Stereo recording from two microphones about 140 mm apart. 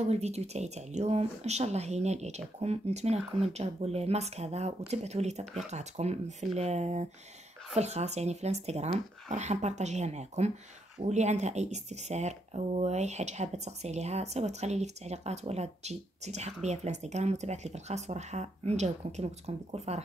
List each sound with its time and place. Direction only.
0.0 s speech: 50° right (ahead or behind)
5.4 s speech: 5° left (ahead or behind)
5.7 s speech: 55° right (ahead or behind)